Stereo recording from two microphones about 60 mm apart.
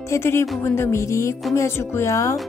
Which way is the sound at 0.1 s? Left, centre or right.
Left.